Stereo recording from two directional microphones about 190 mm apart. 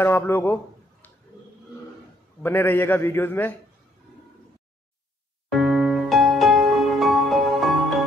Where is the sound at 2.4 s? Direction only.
10° left (ahead or behind).